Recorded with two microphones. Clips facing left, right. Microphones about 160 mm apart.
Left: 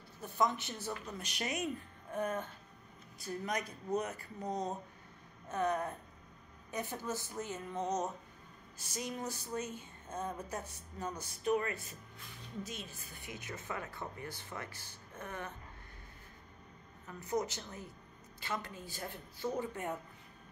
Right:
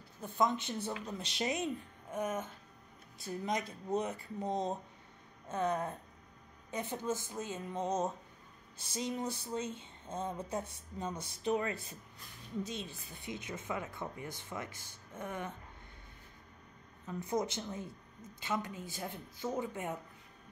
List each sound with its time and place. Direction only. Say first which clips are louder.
0.2 s speech: right 1 dB; 20° right (ahead or behind)
17.2 s speech: right 1 dB; 25° right (ahead or behind)